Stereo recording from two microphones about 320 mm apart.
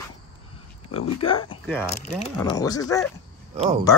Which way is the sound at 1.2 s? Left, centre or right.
Centre.